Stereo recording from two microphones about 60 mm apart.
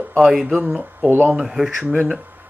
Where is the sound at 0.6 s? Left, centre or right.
Centre.